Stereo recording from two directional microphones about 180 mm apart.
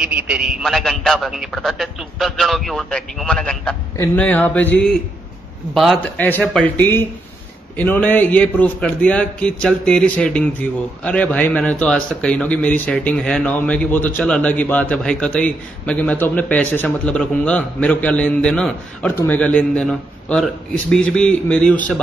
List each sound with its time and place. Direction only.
0.0 s a man's voice: 5° right (ahead or behind)
6.1 s a man's voice: 10° left (ahead or behind)